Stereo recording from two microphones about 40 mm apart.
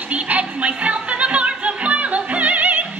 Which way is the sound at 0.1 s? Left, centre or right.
Right.